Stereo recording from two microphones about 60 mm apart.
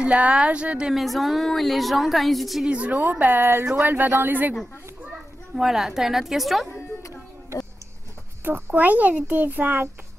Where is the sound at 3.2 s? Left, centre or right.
Right.